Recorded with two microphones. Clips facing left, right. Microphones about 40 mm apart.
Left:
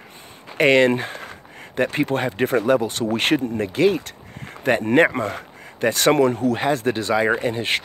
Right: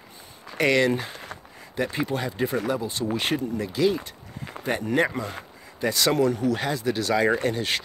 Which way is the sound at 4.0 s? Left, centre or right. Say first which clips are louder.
Left 4 dB; left.